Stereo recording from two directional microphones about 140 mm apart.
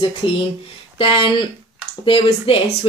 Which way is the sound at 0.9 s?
35° left (ahead or behind).